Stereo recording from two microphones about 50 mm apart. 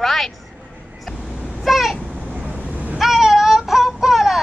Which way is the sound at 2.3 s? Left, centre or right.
Centre.